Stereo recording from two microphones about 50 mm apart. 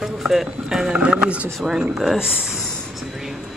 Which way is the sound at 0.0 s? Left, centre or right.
Centre.